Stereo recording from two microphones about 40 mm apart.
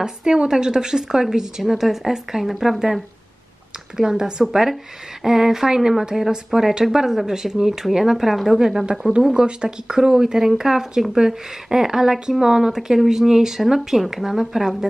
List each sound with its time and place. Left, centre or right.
0.0 s speech: centre
3.9 s speech: centre